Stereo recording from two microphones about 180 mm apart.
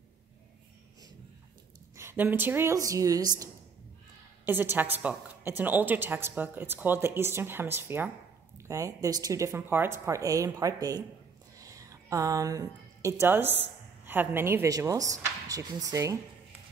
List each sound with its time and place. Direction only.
2.0 s a woman's voice: 15° right (ahead or behind)
4.5 s a woman's voice: 10° right (ahead or behind)